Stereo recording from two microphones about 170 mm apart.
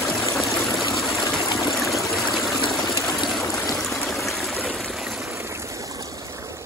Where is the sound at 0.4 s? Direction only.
Centre (ahead or behind).